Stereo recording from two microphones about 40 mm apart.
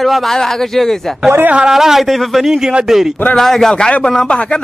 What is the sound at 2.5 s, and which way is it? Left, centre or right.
Speech, right.